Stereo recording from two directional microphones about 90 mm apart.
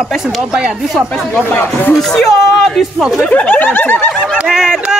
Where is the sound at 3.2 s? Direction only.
15° left (ahead or behind).